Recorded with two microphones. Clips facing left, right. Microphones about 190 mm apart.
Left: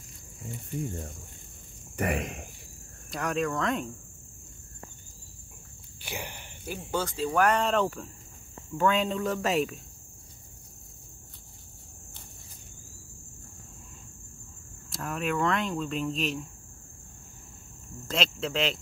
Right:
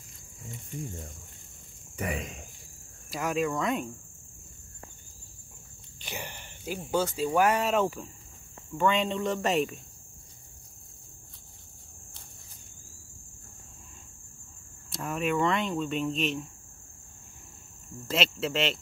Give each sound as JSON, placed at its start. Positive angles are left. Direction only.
{"t": 2.0, "sound": "speech", "side_deg": 65}
{"t": 3.1, "sound": "speech", "side_deg": -5}
{"t": 5.9, "sound": "a sound", "side_deg": 10}
{"t": 6.6, "sound": "speech", "side_deg": -10}
{"t": 14.9, "sound": "speech", "side_deg": 0}
{"t": 18.0, "sound": "speech", "side_deg": -5}